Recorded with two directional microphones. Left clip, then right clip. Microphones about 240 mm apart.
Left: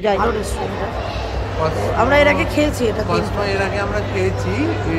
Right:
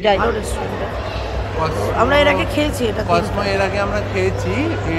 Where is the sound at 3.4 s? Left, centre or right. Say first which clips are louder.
Right 2 dB; right.